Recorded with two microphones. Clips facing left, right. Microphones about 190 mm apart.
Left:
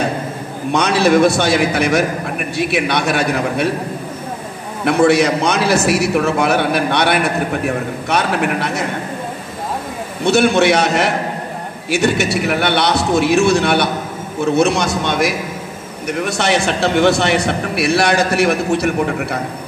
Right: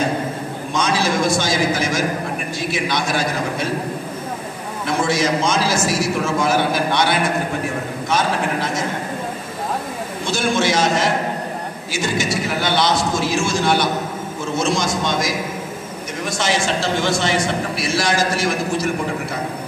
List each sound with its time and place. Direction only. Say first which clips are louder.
0.7 s a man's voice: left 7 dB; 65° left (ahead or behind)
4.8 s a man's voice: left 7 dB; 65° left (ahead or behind)
10.2 s a man's voice: left 8 dB; 65° left (ahead or behind)